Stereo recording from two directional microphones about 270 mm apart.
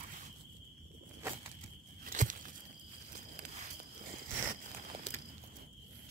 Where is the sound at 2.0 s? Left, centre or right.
Right.